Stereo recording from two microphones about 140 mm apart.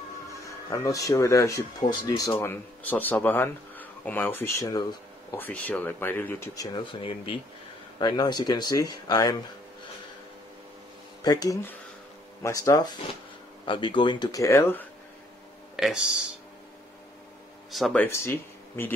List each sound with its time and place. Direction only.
0.3 s speech: 25° left (ahead or behind)
11.2 s speech: 25° left (ahead or behind)
13.7 s speech: 35° left (ahead or behind); by 14.9 s 15° left (ahead or behind)
15.7 s speech: 5° right (ahead or behind)
17.6 s speech: centre (ahead or behind)
17.9 s speech: 15° left (ahead or behind)